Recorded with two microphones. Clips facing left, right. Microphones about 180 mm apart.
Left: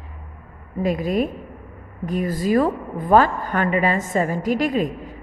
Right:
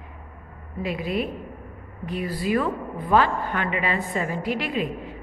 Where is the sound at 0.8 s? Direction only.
45° left (ahead or behind).